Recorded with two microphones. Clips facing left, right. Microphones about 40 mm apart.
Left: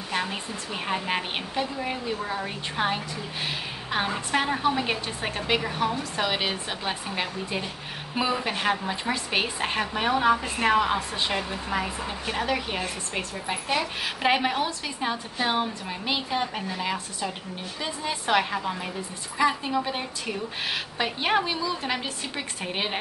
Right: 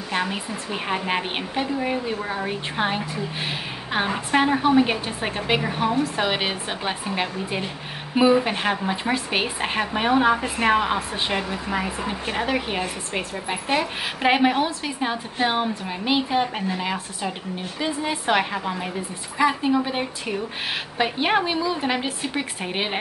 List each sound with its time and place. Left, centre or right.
0.1 s a woman's voice: centre